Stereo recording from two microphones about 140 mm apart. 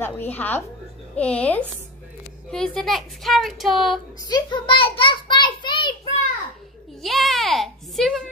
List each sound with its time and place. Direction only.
0.0 s a woman's voice: 15° left (ahead or behind)
4.3 s child singing: 35° left (ahead or behind)
7.0 s a sound: centre (ahead or behind)